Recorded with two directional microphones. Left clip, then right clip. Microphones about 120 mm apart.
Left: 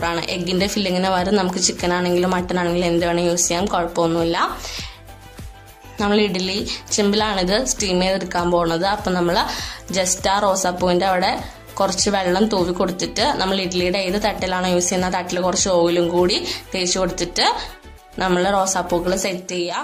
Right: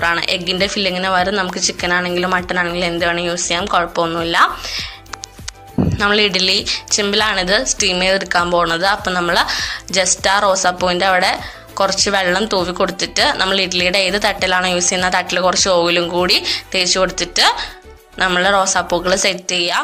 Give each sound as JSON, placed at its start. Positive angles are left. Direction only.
{"t": 0.0, "sound": "a woman's voice", "side_deg": -25}
{"t": 5.9, "sound": "a woman's voice", "side_deg": -25}